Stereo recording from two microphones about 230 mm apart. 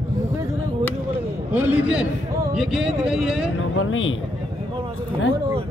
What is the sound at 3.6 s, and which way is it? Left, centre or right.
Speech, left.